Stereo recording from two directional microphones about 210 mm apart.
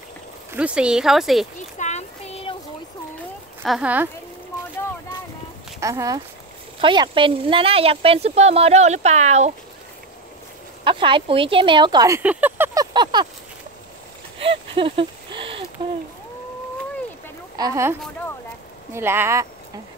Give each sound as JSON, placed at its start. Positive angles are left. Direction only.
{"t": 0.5, "sound": "speech", "side_deg": -5}
{"t": 1.8, "sound": "a sound", "side_deg": 35}
{"t": 3.6, "sound": "speech", "side_deg": -5}
{"t": 5.8, "sound": "speech", "side_deg": -15}
{"t": 10.8, "sound": "speech", "side_deg": -25}
{"t": 14.4, "sound": "a sound", "side_deg": -25}
{"t": 17.6, "sound": "speech", "side_deg": -15}